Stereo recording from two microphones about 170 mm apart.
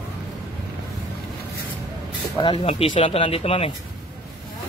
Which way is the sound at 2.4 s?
30° left (ahead or behind).